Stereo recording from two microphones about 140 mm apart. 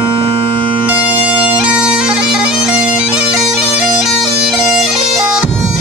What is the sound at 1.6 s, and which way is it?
Bagpipes, 10° right (ahead or behind).